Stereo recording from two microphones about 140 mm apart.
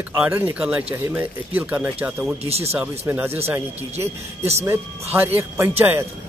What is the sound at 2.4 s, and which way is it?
Speech, 45° right (ahead or behind).